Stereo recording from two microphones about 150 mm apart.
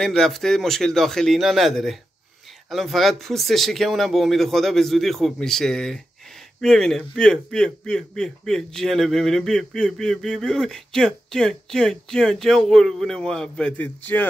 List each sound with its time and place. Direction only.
0.0 s a man's voice: centre (ahead or behind)